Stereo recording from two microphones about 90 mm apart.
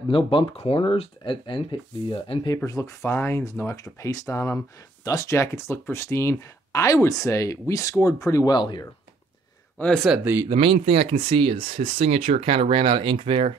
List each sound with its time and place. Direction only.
0.1 s speech: 75° left (ahead or behind)
2.4 s speech: 40° left (ahead or behind)
8.5 s speech: 55° left (ahead or behind)
9.8 s speech: 10° left (ahead or behind)
10.5 s speech: 90° right